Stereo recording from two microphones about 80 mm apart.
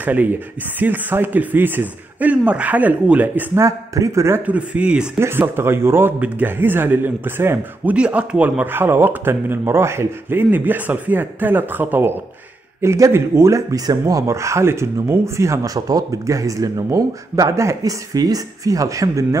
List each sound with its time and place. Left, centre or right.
0.0 s speech: right
3.5 s speech: right
4.4 s speech: centre
5.2 s speech: right
7.9 s speech: centre; by 10.4 s right
10.5 s speech: right
12.8 s speech: right